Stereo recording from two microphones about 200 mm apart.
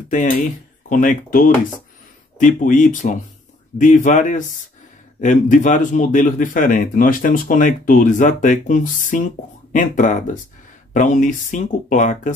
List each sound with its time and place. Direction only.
0.1 s a man's voice: 40° left (ahead or behind)